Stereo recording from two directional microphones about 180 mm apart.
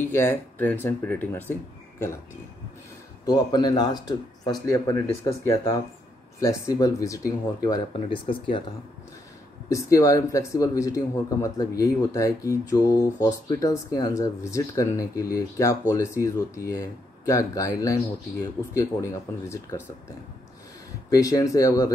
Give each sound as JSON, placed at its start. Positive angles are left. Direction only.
{"t": 0.1, "sound": "speech", "side_deg": 10}
{"t": 3.3, "sound": "speech", "side_deg": 20}
{"t": 9.7, "sound": "speech", "side_deg": 15}
{"t": 21.1, "sound": "speech", "side_deg": 20}